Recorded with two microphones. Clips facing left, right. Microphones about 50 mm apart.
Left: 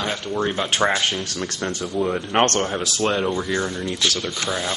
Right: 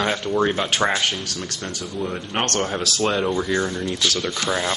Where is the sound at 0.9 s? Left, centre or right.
Left.